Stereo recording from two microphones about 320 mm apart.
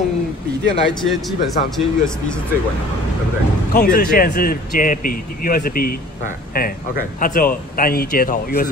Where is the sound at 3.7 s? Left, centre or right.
Left.